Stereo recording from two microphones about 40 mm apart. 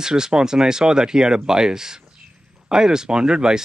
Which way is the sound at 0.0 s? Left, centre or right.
Centre.